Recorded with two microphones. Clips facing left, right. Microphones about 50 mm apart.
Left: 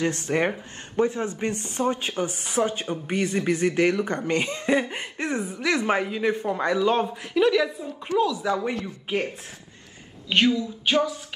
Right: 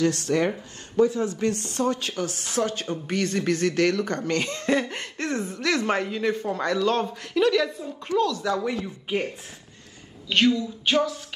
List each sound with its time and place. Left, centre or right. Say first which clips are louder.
0.0 s speech: right 1 dB; left
10.3 s speech: even; centre